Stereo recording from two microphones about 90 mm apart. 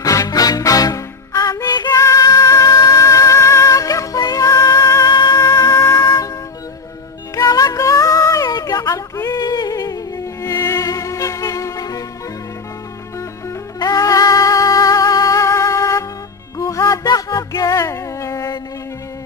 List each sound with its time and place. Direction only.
0.0 s music: 40° left (ahead or behind)
2.0 s music: 35° left (ahead or behind)
7.3 s music: 45° left (ahead or behind)
8.5 s a sound: 45° left (ahead or behind)
9.4 s music: 50° left (ahead or behind)
13.7 s music: 40° left (ahead or behind)